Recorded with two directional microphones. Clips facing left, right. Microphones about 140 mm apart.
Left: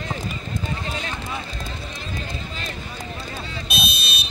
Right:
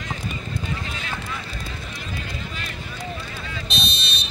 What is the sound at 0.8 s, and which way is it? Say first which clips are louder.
Clip-clop: left 2 dB; 35° left (ahead or behind).